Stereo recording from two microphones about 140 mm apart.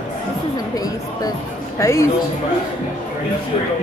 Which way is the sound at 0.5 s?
25° left (ahead or behind).